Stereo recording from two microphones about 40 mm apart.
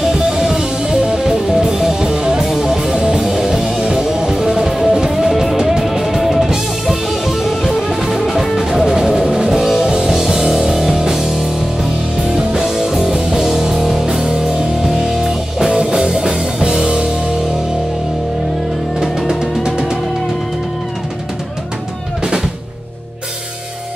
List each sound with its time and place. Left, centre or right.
0.0 s music: centre
9.8 s music: centre
15.8 s music: centre
19.2 s music: centre